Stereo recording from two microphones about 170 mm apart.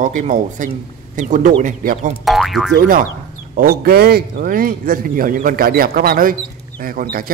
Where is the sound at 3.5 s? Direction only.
60° right (ahead or behind).